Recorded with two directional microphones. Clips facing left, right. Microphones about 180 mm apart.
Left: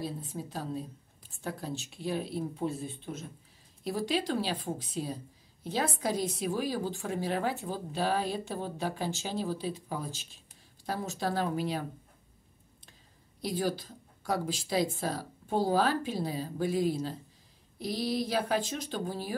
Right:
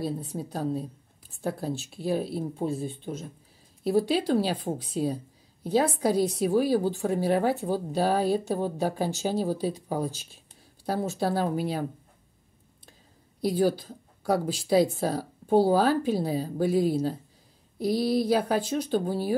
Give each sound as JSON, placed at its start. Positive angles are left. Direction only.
{"t": 0.0, "sound": "speech", "side_deg": -40}
{"t": 4.4, "sound": "a woman's voice", "side_deg": -45}
{"t": 13.4, "sound": "speech", "side_deg": -35}
{"t": 18.4, "sound": "speech", "side_deg": -35}